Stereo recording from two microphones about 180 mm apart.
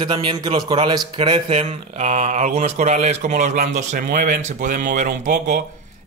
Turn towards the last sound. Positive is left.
turn(degrees=-45)  # may be behind; listen again after turning